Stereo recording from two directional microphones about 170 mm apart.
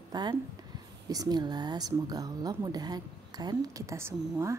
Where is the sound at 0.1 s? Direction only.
25° right (ahead or behind).